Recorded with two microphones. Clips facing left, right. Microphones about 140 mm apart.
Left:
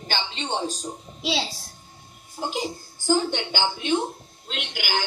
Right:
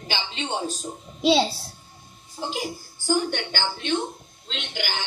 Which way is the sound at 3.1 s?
15° left (ahead or behind).